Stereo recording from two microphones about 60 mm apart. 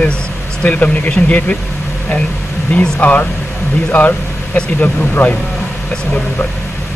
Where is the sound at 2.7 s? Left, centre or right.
Left.